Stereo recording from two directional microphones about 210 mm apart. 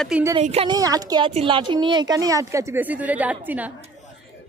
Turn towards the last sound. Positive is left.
turn(degrees=-5)  # may be behind; listen again after turning